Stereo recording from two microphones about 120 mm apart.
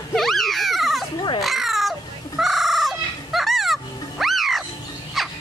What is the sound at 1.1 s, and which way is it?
Baby cry, 40° left (ahead or behind).